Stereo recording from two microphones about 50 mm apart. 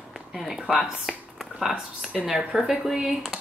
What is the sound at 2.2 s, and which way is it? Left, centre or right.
Speech, centre.